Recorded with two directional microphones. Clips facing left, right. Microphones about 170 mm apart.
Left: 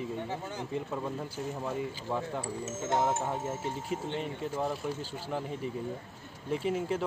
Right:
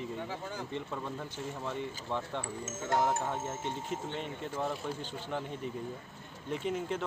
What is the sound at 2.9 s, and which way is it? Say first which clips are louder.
Speech: left 1 dB; 25° left (ahead or behind).